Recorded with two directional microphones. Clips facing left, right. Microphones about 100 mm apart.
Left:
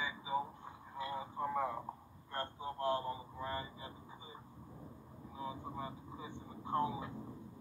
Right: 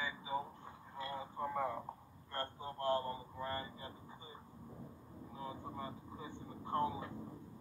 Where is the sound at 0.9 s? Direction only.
15° left (ahead or behind).